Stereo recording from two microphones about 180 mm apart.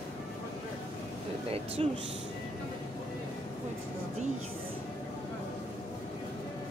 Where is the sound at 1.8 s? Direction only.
35° right (ahead or behind).